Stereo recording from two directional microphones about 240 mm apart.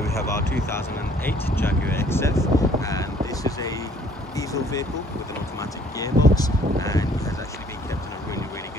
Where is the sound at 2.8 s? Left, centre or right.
Centre.